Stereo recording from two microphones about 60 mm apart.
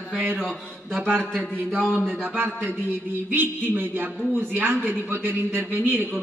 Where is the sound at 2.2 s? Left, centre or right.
Right.